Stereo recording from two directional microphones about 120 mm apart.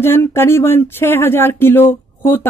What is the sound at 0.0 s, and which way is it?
A woman's voice, 20° left (ahead or behind).